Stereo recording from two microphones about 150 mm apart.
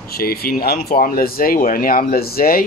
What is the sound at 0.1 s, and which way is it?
Speech, 90° left.